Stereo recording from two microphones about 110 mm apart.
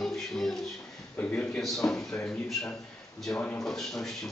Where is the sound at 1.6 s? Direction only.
5° left (ahead or behind).